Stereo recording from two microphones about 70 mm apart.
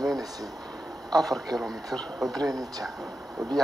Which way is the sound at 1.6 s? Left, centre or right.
Centre.